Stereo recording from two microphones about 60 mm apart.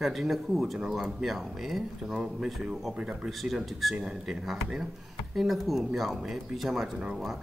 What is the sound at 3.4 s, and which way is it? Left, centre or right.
Speech, centre.